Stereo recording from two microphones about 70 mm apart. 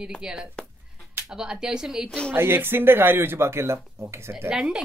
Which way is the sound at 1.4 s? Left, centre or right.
Centre.